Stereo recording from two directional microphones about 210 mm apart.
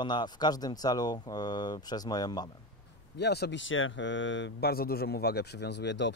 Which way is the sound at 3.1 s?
50° left (ahead or behind).